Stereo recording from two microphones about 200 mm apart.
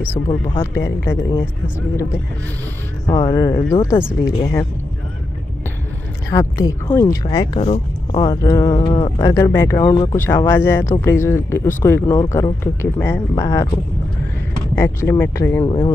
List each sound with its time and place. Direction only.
0.1 s speech: 15° left (ahead or behind)
3.1 s speech: 20° left (ahead or behind)
6.3 s speech: 15° left (ahead or behind)
9.3 s speech: 15° left (ahead or behind)
14.8 s speech: 15° left (ahead or behind)